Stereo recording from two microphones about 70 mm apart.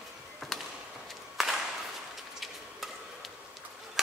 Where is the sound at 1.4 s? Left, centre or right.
Centre.